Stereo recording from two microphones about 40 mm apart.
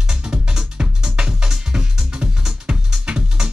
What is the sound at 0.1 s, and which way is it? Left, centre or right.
Music, right.